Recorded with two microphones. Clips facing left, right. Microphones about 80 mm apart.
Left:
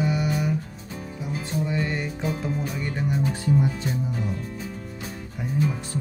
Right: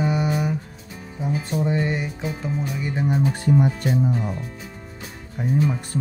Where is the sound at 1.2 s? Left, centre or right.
Right.